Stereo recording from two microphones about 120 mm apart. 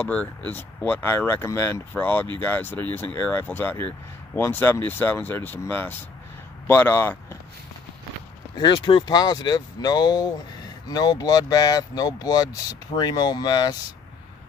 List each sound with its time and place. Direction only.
0.0 s speech: 10° left (ahead or behind)
8.5 s speech: 40° left (ahead or behind)